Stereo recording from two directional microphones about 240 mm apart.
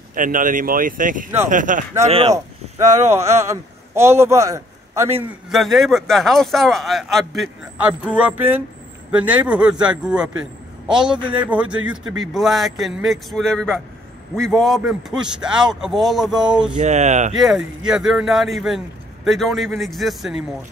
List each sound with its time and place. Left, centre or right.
0.1 s speech: right
2.3 s a man's voice: centre
5.5 s speech: centre
16.7 s speech: right
17.4 s speech: centre